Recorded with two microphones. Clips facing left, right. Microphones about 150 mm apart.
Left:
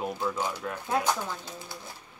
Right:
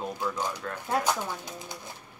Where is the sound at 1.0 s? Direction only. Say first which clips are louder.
Even; 15° right (ahead or behind).